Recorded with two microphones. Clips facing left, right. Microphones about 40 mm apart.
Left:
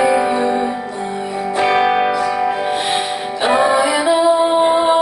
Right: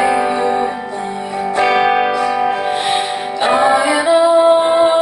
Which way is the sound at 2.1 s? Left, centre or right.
Right.